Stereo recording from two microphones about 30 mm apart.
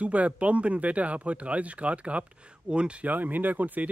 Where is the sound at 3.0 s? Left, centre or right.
Right.